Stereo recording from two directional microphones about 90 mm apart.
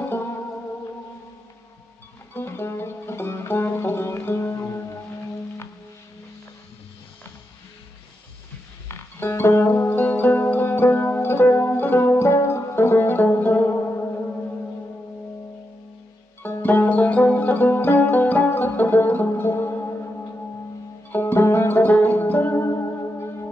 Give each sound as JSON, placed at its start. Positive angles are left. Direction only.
{"t": 0.0, "sound": "music", "side_deg": 25}
{"t": 2.3, "sound": "music", "side_deg": 25}
{"t": 8.8, "sound": "music", "side_deg": 30}
{"t": 16.6, "sound": "banjo", "side_deg": 20}
{"t": 21.1, "sound": "music", "side_deg": 25}